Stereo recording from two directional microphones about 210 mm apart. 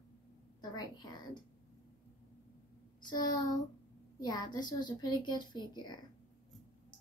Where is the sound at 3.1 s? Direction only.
20° left (ahead or behind).